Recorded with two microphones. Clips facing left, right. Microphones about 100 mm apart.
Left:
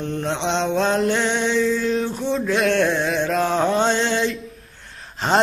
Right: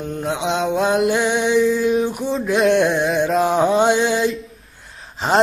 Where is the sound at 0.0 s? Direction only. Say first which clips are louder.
Right 1 dB; 5° right (ahead or behind).